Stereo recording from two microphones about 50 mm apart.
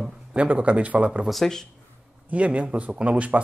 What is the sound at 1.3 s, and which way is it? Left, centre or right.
Speech, centre.